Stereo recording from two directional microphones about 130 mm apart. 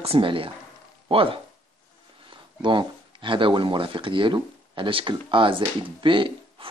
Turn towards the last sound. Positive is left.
turn(degrees=-40)  # may be behind; listen again after turning